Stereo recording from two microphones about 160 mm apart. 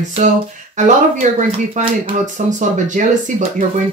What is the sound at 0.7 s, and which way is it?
Speech, 50° right (ahead or behind).